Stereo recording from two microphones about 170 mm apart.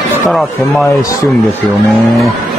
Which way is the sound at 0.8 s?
20° left (ahead or behind).